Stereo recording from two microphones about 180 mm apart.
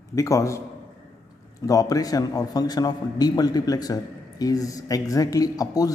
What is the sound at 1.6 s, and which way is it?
A man's voice, 20° left (ahead or behind).